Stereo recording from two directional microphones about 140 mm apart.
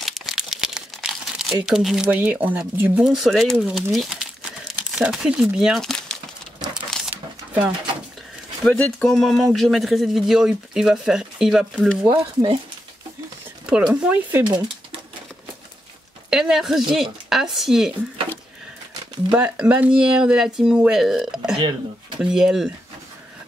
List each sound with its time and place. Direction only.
0.0 s crumpling: centre (ahead or behind)
2.8 s speech: 5° right (ahead or behind)
6.7 s a sound: centre (ahead or behind)
8.6 s speech: 5° left (ahead or behind)
12.1 s speech: 35° right (ahead or behind)
13.7 s speech: 10° right (ahead or behind)
14.4 s speech: 30° right (ahead or behind)
16.3 s speech: 5° right (ahead or behind)
19.3 s speech: 10° right (ahead or behind)